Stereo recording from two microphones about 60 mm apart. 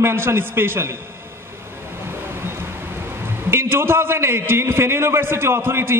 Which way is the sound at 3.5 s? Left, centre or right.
Right.